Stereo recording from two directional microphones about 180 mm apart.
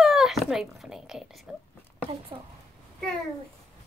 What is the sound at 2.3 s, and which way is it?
Speech, 25° right (ahead or behind).